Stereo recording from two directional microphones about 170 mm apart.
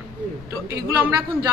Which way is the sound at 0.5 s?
15° right (ahead or behind).